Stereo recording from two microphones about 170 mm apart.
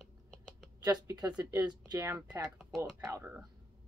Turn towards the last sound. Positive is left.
turn(degrees=-15)  # may be behind; listen again after turning